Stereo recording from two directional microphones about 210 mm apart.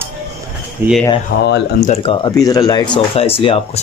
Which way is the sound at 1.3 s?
45° left (ahead or behind).